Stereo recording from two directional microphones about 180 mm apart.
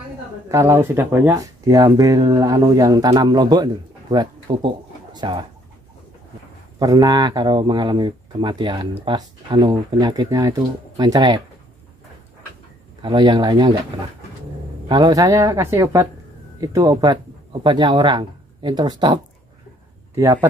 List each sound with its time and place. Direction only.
0.5 s speech: 15° right (ahead or behind)
6.8 s speech: 20° right (ahead or behind)
13.0 s speech: 25° right (ahead or behind)
14.9 s speech: 25° right (ahead or behind)
20.2 s speech: 15° right (ahead or behind)